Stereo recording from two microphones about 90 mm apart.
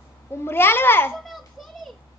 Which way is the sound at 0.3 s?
25° left (ahead or behind).